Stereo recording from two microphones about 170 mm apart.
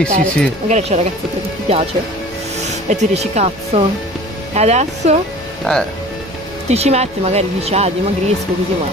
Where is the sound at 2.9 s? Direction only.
40° right (ahead or behind).